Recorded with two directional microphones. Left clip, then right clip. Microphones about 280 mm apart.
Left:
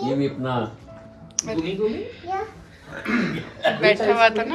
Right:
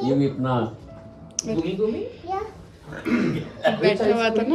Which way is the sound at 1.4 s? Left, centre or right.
Centre.